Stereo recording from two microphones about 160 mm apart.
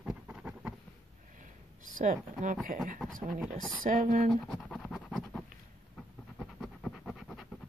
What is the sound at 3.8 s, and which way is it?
Speech, 55° right (ahead or behind).